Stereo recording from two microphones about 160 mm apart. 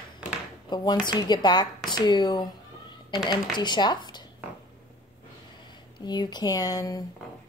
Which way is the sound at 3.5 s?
30° left (ahead or behind).